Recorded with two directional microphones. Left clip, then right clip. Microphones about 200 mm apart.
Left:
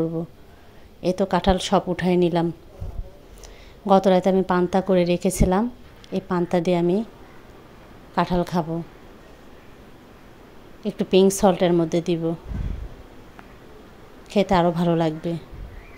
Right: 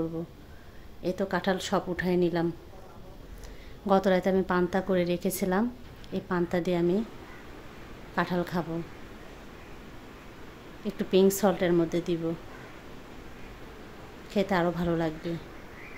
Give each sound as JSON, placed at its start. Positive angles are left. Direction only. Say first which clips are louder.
{"t": 1.0, "sound": "a woman's voice", "louder": "left 8 dB", "side_deg": 30}
{"t": 3.8, "sound": "a woman's voice", "louder": "left 7 dB", "side_deg": 20}
{"t": 8.1, "sound": "a woman's voice", "louder": "left 7 dB", "side_deg": 25}
{"t": 10.8, "sound": "a woman's voice", "louder": "left 6 dB", "side_deg": 25}
{"t": 14.3, "sound": "a woman's voice", "louder": "left 8 dB", "side_deg": 25}